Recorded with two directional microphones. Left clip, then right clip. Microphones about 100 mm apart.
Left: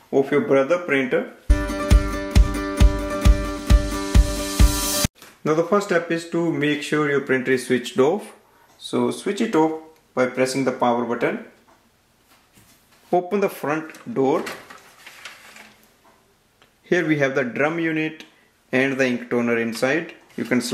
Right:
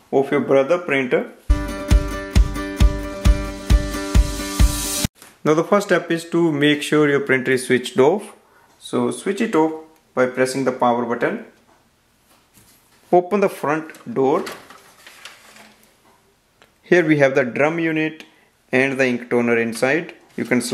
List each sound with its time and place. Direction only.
0.1 s speech: 35° right (ahead or behind)
1.5 s music: centre (ahead or behind)
5.4 s speech: 55° right (ahead or behind); by 8.4 s 35° right (ahead or behind)
9.3 s speech: 5° right (ahead or behind)
10.1 s speech: 30° right (ahead or behind)
13.1 s speech: 40° right (ahead or behind)
16.8 s speech: 50° right (ahead or behind); by 20.7 s 35° right (ahead or behind)